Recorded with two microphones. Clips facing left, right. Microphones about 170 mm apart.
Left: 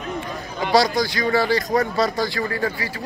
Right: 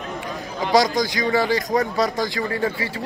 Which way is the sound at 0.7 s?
20° right (ahead or behind).